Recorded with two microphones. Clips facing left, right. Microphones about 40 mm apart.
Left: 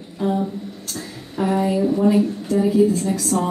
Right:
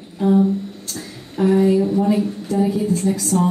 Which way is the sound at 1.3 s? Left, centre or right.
Centre.